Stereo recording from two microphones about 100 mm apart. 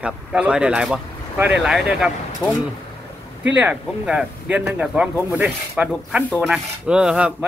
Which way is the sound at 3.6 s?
10° right (ahead or behind).